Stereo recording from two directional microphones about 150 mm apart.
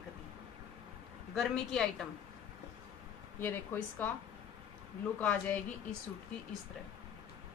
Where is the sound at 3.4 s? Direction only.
15° left (ahead or behind).